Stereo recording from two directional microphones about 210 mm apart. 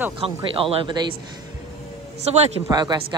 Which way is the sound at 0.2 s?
25° right (ahead or behind).